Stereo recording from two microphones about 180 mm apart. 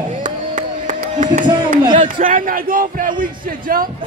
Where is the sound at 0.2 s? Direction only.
45° right (ahead or behind).